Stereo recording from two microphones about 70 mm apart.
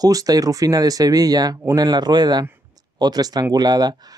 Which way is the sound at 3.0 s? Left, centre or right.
Right.